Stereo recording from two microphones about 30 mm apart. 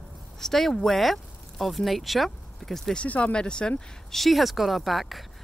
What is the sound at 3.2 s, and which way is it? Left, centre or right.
Speech, left.